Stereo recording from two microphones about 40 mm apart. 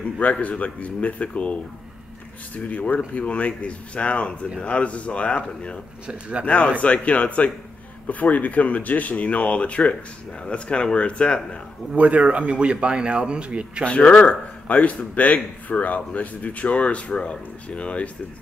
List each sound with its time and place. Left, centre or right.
0.2 s speech: left
6.0 s speech: right
6.4 s speech: left
12.0 s speech: right
13.8 s speech: left